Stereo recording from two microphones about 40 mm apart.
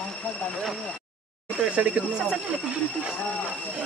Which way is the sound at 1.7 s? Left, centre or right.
Right.